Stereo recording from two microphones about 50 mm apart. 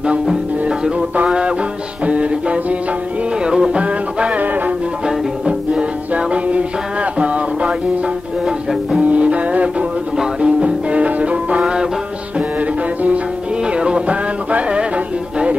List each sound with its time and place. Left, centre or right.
0.3 s music: centre
0.9 s music: right
9.0 s music: right
11.6 s music: centre
12.4 s music: right